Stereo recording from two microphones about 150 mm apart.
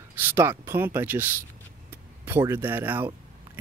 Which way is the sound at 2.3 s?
15° right (ahead or behind).